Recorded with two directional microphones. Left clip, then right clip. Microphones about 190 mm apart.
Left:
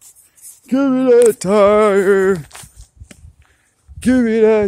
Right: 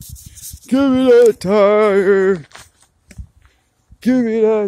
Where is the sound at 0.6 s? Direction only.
Centre (ahead or behind).